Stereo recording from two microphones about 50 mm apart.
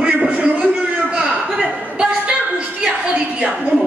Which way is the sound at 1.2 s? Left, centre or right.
Right.